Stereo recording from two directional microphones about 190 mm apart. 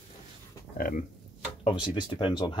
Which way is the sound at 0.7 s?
50° left (ahead or behind).